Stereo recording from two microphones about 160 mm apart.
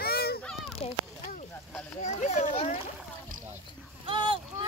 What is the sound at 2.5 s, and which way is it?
Boat, 40° left (ahead or behind).